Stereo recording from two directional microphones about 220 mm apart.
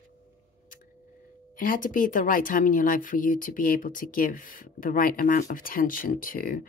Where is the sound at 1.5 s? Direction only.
40° left (ahead or behind).